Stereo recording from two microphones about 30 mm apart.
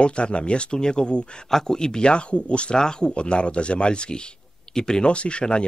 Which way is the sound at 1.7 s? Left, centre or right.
Left.